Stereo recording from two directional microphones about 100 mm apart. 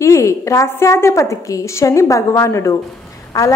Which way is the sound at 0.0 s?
30° left (ahead or behind).